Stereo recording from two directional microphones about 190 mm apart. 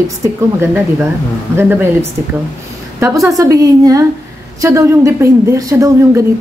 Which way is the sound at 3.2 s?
15° right (ahead or behind).